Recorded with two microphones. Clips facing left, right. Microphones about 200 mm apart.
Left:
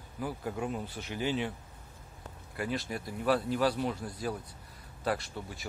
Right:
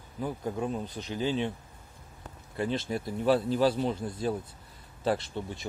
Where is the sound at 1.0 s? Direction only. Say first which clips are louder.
Right 3 dB; 15° left (ahead or behind).